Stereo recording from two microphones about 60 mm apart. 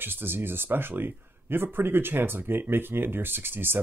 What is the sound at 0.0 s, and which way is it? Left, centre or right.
Speech, right.